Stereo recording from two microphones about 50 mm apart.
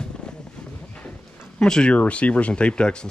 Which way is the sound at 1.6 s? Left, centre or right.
Centre.